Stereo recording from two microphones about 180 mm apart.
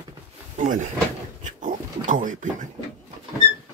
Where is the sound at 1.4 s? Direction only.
45° right (ahead or behind).